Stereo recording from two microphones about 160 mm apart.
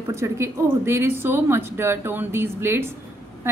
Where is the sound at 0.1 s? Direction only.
15° right (ahead or behind).